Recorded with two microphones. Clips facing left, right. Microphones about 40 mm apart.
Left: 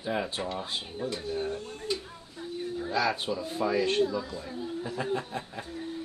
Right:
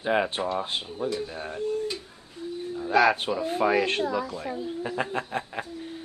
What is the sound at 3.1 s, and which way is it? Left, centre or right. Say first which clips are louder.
Speech: right 5 dB; right.